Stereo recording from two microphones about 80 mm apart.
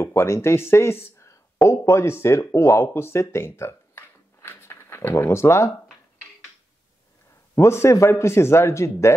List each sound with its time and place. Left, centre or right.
0.0 s speech: left
7.5 s a man's voice: left